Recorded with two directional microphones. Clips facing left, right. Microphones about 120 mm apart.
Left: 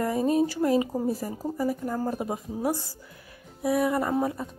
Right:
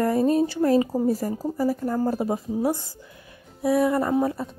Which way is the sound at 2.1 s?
30° right (ahead or behind).